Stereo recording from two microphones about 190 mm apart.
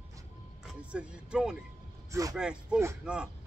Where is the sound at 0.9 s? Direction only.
5° right (ahead or behind).